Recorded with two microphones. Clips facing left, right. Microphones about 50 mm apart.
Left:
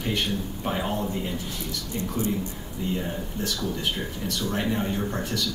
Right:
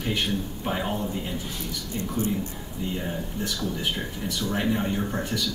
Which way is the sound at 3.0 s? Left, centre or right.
Centre.